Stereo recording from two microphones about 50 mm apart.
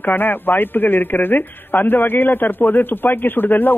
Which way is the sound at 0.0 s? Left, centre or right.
Left.